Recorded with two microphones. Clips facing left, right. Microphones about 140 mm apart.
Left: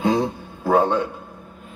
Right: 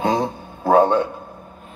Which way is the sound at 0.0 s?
45° right (ahead or behind).